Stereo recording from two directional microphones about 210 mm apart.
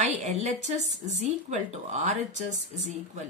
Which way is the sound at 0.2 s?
35° right (ahead or behind).